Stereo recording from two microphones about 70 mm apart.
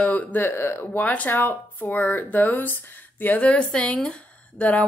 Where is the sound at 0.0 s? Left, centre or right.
Left.